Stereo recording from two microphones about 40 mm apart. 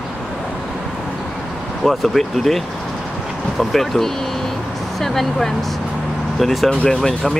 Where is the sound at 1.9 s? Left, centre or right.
Centre.